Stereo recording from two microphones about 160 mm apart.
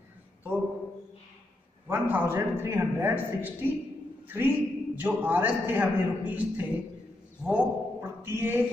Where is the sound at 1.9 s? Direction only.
10° right (ahead or behind).